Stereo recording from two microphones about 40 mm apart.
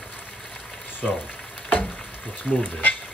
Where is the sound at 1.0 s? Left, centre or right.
Centre.